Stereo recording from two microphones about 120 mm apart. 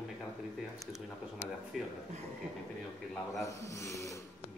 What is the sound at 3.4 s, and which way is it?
Snake, 25° left (ahead or behind).